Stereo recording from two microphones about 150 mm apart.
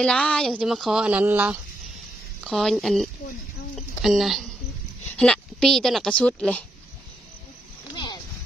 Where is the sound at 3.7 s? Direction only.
Centre (ahead or behind).